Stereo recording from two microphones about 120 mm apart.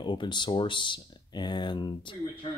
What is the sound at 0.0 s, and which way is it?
Speech, 40° left (ahead or behind).